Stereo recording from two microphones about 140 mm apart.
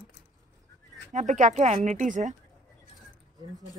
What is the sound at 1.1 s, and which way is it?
Speech, 60° right (ahead or behind).